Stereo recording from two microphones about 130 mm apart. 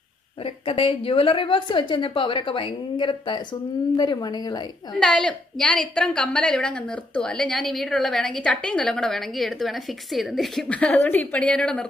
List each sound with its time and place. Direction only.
0.4 s a woman's voice: 45° left (ahead or behind)
4.9 s a woman's voice: 5° left (ahead or behind)